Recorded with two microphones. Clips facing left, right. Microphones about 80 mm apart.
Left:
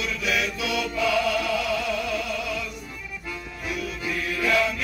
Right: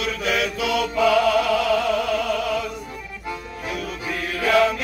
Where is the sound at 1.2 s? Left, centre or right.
Right.